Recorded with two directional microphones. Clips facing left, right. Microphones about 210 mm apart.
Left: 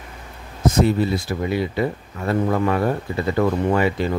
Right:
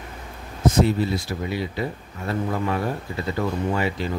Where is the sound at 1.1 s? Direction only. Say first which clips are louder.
Left 4 dB; 55° left (ahead or behind).